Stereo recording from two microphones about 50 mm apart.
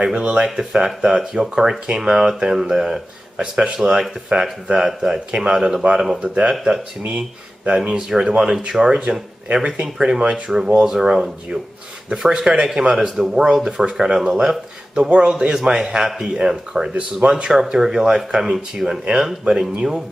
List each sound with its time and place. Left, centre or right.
0.0 s speech: right
0.5 s speech: centre
6.2 s speech: right; by 19.7 s centre